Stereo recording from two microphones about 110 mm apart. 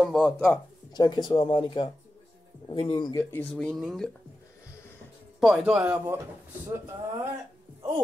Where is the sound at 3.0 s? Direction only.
35° left (ahead or behind).